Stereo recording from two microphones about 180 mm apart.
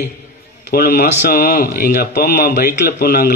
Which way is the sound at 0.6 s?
60° left (ahead or behind).